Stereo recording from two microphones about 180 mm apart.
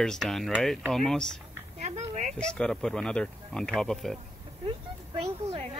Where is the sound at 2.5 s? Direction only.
5° left (ahead or behind).